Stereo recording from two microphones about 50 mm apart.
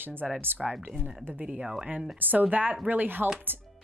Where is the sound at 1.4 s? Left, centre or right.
Right.